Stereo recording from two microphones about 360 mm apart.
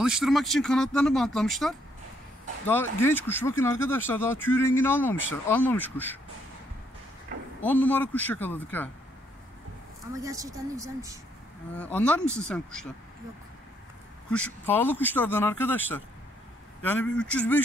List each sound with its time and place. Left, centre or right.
0.0 s speech: centre
7.6 s speech: centre
10.1 s speech: centre
11.7 s speech: centre
14.3 s speech: centre